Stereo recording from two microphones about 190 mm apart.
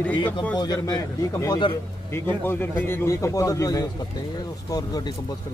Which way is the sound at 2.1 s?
10° left (ahead or behind).